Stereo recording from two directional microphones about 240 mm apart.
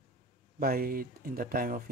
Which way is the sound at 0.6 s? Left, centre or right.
Right.